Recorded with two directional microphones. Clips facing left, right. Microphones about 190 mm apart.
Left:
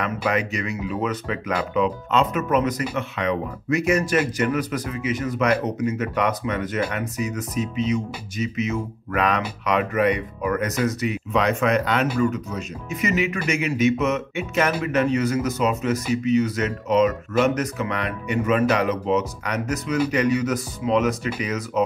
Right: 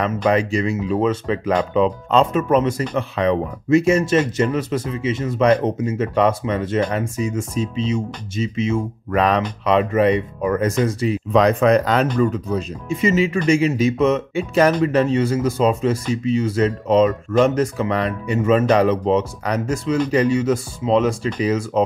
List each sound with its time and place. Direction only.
0.3 s speech: 30° right (ahead or behind)